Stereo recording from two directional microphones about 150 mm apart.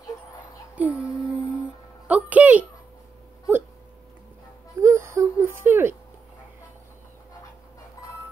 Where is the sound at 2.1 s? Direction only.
10° right (ahead or behind).